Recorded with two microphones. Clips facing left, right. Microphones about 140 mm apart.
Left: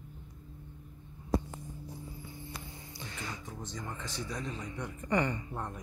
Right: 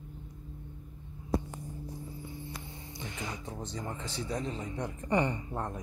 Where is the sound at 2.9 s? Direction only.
20° right (ahead or behind).